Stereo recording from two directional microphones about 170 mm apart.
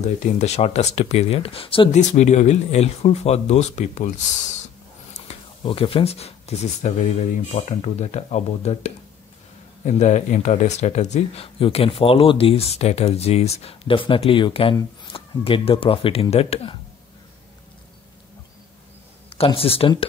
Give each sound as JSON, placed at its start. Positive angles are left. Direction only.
{"t": 0.0, "sound": "speech", "side_deg": 40}
{"t": 2.0, "sound": "speech", "side_deg": 45}
{"t": 19.3, "sound": "speech", "side_deg": 35}